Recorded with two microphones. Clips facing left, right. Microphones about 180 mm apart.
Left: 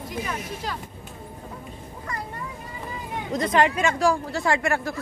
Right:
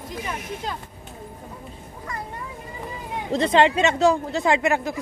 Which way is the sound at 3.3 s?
25° right (ahead or behind).